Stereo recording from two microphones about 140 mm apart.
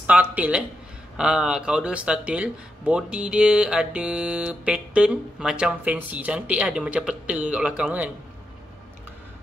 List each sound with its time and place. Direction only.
0.0 s speech: 10° right (ahead or behind)